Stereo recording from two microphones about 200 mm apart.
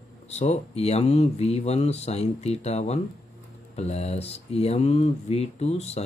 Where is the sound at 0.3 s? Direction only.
30° left (ahead or behind).